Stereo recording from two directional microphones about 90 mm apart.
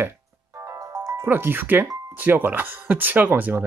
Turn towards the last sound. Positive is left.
turn(degrees=-20)  # may be behind; listen again after turning